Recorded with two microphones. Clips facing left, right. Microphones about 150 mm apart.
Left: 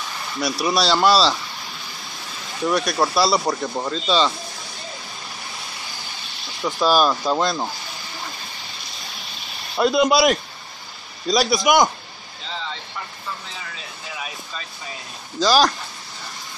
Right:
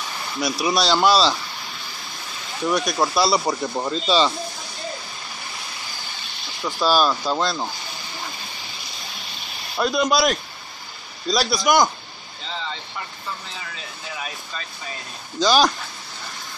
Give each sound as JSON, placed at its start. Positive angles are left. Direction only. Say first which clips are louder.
{"t": 0.0, "sound": "speech", "louder": "even", "side_deg": 0}
{"t": 5.8, "sound": "vehicle", "louder": "even", "side_deg": 0}
{"t": 8.7, "sound": "a sound", "louder": "even", "side_deg": 0}
{"t": 9.8, "sound": "speech", "louder": "left 4 dB", "side_deg": 20}
{"t": 11.2, "sound": "speech", "louder": "left 2 dB", "side_deg": 0}
{"t": 12.4, "sound": "vehicle", "louder": "even", "side_deg": 0}
{"t": 13.5, "sound": "speech", "louder": "even", "side_deg": 0}